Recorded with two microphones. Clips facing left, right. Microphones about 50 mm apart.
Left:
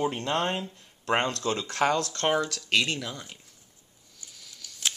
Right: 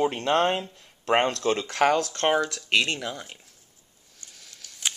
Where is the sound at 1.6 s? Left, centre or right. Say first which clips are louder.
Right 3 dB; right; by 3.3 s centre.